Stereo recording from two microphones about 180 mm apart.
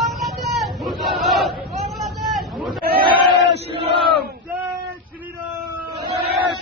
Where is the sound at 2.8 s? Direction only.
60° right (ahead or behind).